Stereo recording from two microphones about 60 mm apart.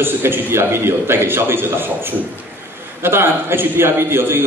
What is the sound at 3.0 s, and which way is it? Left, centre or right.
A man's voice, right.